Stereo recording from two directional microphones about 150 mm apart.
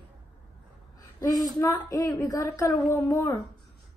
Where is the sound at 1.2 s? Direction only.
25° left (ahead or behind).